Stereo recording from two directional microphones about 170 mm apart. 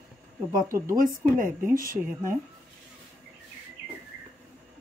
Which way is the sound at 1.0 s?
55° right (ahead or behind).